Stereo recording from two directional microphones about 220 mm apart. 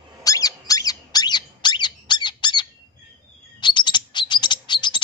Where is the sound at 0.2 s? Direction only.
15° left (ahead or behind).